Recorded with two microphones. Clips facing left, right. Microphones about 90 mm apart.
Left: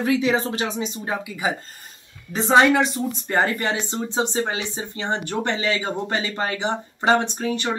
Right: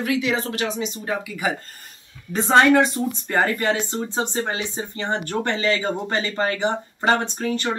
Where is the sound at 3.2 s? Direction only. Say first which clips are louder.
Right 1 dB; 20° left (ahead or behind).